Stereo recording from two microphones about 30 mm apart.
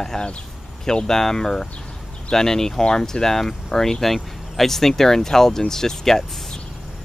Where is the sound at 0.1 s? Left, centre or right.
Centre.